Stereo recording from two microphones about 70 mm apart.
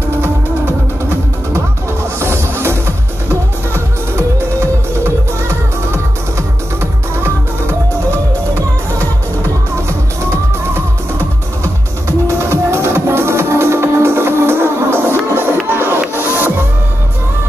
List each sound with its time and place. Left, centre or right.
2.1 s music: right
12.4 s music: right